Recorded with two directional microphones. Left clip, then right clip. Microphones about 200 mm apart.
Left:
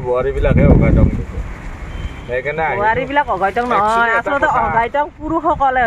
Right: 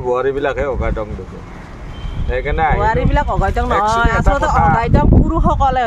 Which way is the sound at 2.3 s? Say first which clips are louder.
Right 1 dB; 25° right (ahead or behind).